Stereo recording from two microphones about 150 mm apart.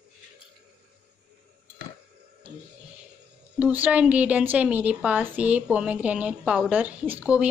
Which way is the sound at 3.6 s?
10° right (ahead or behind).